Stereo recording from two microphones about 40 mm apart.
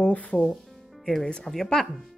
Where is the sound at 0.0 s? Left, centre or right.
Left.